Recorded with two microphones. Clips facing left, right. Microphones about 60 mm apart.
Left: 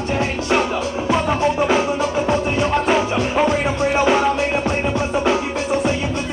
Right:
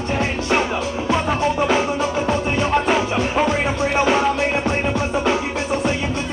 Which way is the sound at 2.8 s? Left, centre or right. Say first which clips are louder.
Left 1 dB; centre.